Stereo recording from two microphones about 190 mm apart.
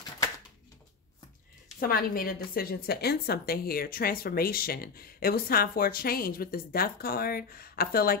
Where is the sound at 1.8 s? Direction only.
50° left (ahead or behind).